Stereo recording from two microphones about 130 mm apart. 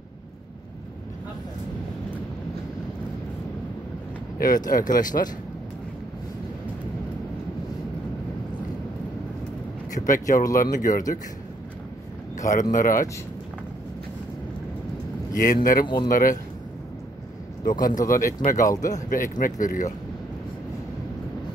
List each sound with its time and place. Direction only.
4.6 s speech: 90° left
9.9 s speech: 85° left
12.4 s speech: 80° left
12.7 s speech: 90° left
15.4 s speech: 90° left
17.6 s speech: 90° left
18.7 s speech: 25° left (ahead or behind)
18.9 s speech: 90° left